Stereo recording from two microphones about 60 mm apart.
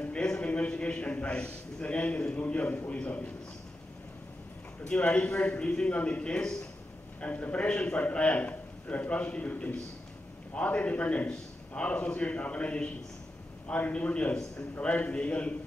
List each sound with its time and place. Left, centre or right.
0.0 s a man's voice: centre
4.8 s a man's voice: centre